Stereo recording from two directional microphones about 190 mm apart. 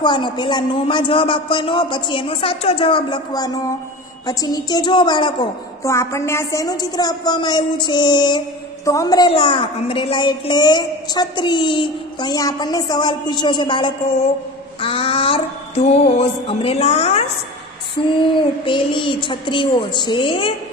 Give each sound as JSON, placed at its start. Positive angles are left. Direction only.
{"t": 0.0, "sound": "a woman's voice", "side_deg": 25}
{"t": 14.8, "sound": "a sound", "side_deg": 30}
{"t": 18.2, "sound": "a woman's voice", "side_deg": 25}